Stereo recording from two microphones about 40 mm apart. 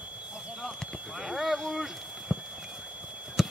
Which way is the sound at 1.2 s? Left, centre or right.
Centre.